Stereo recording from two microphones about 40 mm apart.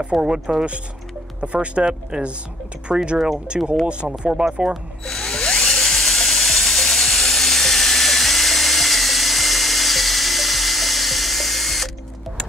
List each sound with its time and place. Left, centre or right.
0.1 s speech: centre
1.4 s speech: right; by 3.0 s centre
3.4 s speech: right
5.0 s drill: centre